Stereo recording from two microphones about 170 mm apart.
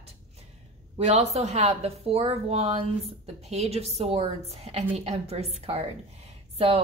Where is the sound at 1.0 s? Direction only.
40° right (ahead or behind).